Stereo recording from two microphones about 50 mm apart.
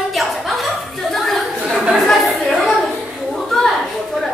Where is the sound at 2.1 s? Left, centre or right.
Centre.